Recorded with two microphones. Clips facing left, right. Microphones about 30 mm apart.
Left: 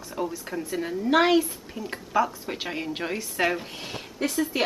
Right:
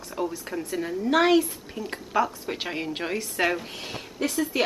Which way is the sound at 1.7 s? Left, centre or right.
Centre.